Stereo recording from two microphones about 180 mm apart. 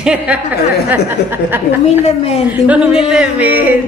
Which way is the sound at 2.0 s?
35° left (ahead or behind).